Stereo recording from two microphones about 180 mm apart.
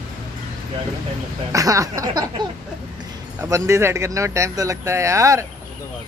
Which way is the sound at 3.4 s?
15° right (ahead or behind).